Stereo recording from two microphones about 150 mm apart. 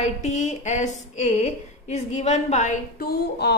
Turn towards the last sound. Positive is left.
turn(degrees=90)